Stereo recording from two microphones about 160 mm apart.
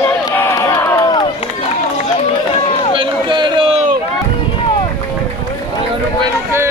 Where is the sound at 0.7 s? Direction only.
20° left (ahead or behind).